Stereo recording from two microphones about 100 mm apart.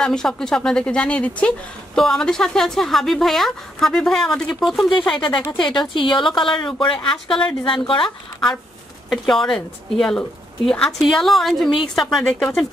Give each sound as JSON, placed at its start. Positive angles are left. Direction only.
{"t": 0.0, "sound": "a woman's voice", "side_deg": 5}
{"t": 4.8, "sound": "speech", "side_deg": 50}
{"t": 9.3, "sound": "speech", "side_deg": 5}